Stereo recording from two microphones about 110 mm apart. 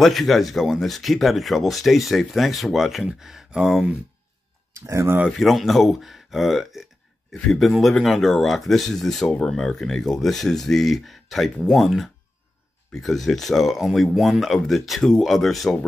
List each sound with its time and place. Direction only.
0.0 s speech: centre (ahead or behind)
4.7 s speech: 25° right (ahead or behind)
5.3 s speech: centre (ahead or behind)